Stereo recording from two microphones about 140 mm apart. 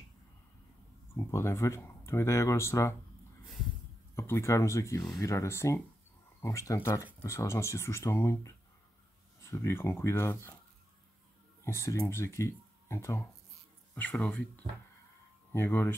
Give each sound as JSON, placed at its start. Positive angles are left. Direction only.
{"t": 1.1, "sound": "speech", "side_deg": 20}
{"t": 4.1, "sound": "speech", "side_deg": 20}
{"t": 11.6, "sound": "speech", "side_deg": 20}
{"t": 15.5, "sound": "speech", "side_deg": 15}